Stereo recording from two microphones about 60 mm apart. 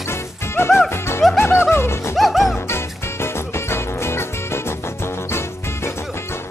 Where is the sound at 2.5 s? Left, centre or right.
Left.